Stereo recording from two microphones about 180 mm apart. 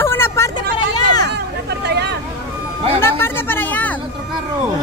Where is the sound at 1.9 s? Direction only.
65° right (ahead or behind).